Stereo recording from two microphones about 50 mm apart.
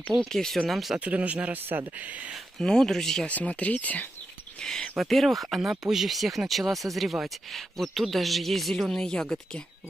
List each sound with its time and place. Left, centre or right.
0.3 s speech: centre
0.7 s speech: centre
0.9 s speech: right
2.6 s speech: centre
3.3 s speech: left
4.9 s speech: centre
9.0 s speech: centre